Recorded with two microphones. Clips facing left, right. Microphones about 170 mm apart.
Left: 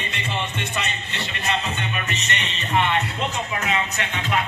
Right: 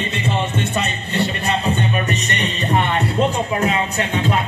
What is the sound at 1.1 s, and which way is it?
Music, 35° right (ahead or behind).